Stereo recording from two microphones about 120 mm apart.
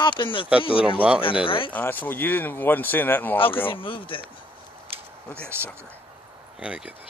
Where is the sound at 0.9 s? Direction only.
10° right (ahead or behind).